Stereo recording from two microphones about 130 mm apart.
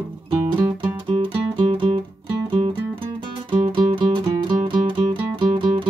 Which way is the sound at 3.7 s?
40° right (ahead or behind).